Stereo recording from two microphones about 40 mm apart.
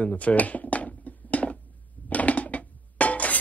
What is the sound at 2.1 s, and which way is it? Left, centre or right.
Music, left.